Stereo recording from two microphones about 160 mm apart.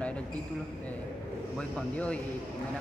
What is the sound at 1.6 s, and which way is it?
Speech, 5° left (ahead or behind).